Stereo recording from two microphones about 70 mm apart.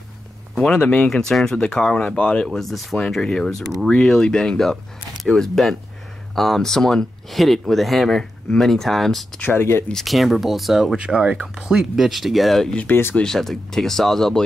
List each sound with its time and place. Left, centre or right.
0.6 s speech: centre
9.4 s speech: left
10.0 s speech: centre
12.7 s speech: left
13.1 s speech: centre